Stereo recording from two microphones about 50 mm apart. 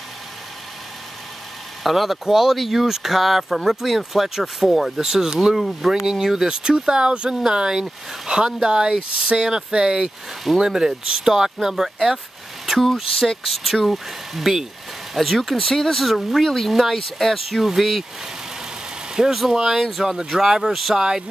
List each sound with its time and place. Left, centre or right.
1.8 s speech: centre
10.0 s speech: centre
10.6 s speech: centre
13.5 s speech: centre
19.3 s speech: centre